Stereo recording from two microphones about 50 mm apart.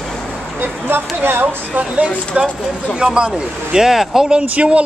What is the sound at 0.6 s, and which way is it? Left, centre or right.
Speech, right.